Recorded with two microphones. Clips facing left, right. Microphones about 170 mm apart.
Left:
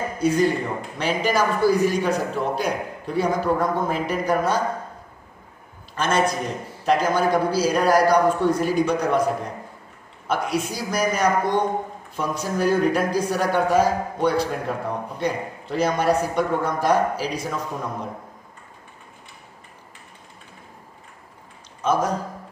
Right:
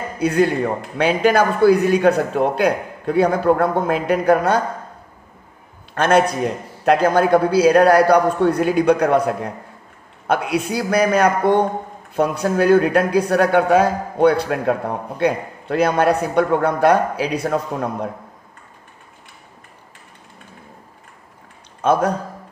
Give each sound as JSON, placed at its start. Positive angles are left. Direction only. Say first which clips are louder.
{"t": 0.2, "sound": "a man's voice", "louder": "right 3 dB", "side_deg": -65}
{"t": 5.9, "sound": "speech", "louder": "right 6 dB", "side_deg": -60}
{"t": 21.8, "sound": "speech", "louder": "right 5 dB", "side_deg": -60}